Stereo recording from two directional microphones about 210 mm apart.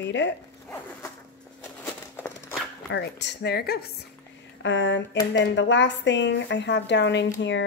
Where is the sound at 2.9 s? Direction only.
55° left (ahead or behind).